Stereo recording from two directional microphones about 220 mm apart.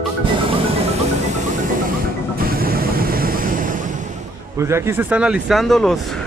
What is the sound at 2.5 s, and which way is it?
Vehicle, 40° right (ahead or behind).